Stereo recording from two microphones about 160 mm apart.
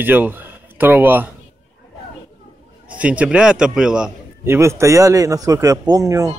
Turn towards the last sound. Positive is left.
turn(degrees=-20)  # may be behind; listen again after turning